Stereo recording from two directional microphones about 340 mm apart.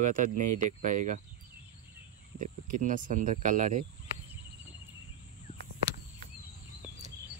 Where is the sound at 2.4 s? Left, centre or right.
Right.